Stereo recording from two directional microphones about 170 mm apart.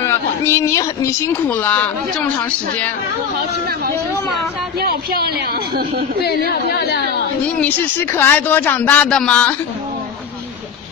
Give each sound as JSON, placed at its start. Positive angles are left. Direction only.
{"t": 0.0, "sound": "speech", "side_deg": 15}
{"t": 4.7, "sound": "speech", "side_deg": -65}
{"t": 6.2, "sound": "a woman's voice", "side_deg": 70}
{"t": 7.4, "sound": "speech", "side_deg": 10}